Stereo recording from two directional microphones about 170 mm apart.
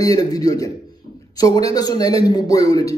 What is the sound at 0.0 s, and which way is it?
A man's voice, 20° left (ahead or behind).